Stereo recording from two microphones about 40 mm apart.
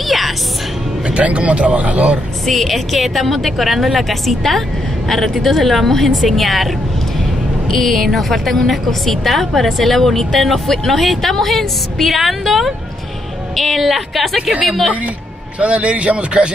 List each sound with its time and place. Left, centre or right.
1.0 s speech: right
2.4 s a woman's voice: centre
7.7 s a woman's voice: centre
15.6 s speech: right